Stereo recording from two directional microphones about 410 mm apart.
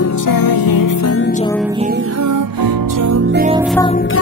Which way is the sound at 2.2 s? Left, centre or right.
Right.